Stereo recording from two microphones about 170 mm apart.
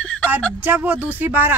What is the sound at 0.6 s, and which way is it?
Speech, 10° right (ahead or behind).